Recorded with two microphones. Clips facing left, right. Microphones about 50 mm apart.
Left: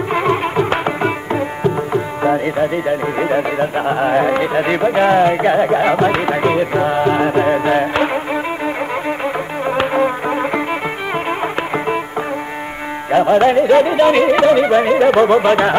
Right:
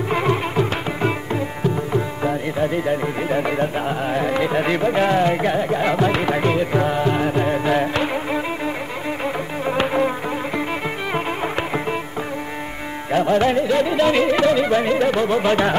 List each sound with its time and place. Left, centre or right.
0.1 s music: centre
1.9 s tabla: left
2.6 s speech: left
4.4 s speech: centre
9.2 s insect: centre
13.1 s speech: left
15.4 s speech: left